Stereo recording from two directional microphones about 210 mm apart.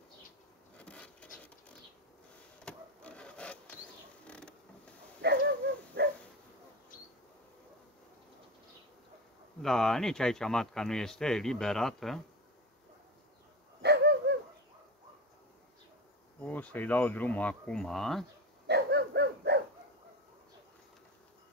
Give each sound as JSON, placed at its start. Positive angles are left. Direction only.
{"t": 0.7, "sound": "insect", "side_deg": 5}
{"t": 2.6, "sound": "wood", "side_deg": 5}
{"t": 5.2, "sound": "a sound", "side_deg": -55}
{"t": 6.0, "sound": "dog", "side_deg": -60}
{"t": 9.6, "sound": "speech", "side_deg": 0}
{"t": 13.8, "sound": "a sound", "side_deg": -50}
{"t": 16.3, "sound": "speech", "side_deg": 5}
{"t": 18.7, "sound": "dog", "side_deg": -50}